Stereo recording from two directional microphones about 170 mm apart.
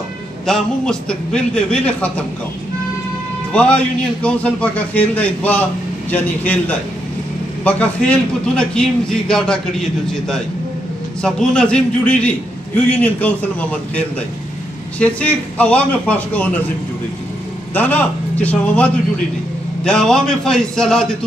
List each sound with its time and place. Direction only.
0.5 s speech: 5° left (ahead or behind)
3.5 s a man's voice: 10° left (ahead or behind)
17.7 s a man's voice: 10° left (ahead or behind)